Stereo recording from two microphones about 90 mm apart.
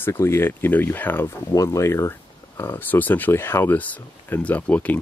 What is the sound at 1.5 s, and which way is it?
Speech, 35° left (ahead or behind).